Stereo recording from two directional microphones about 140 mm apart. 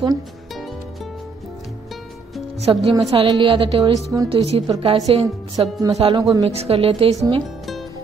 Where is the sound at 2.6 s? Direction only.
40° right (ahead or behind).